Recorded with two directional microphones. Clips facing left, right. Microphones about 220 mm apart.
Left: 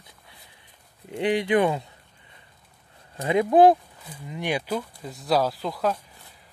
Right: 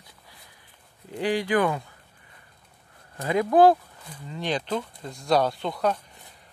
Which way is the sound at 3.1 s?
20° left (ahead or behind).